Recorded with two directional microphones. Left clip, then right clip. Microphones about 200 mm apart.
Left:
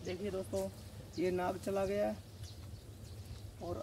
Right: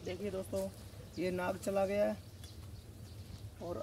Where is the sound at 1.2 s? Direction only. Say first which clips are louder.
Left 1 dB; 45° right (ahead or behind).